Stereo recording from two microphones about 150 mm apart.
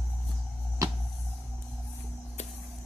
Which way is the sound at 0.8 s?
20° right (ahead or behind).